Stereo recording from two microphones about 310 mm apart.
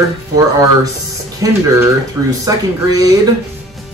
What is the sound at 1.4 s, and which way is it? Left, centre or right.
Speech, centre.